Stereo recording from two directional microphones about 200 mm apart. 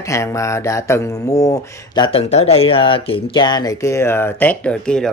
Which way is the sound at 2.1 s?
30° left (ahead or behind).